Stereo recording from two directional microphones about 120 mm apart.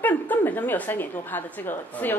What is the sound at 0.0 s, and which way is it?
A woman's voice, 15° left (ahead or behind).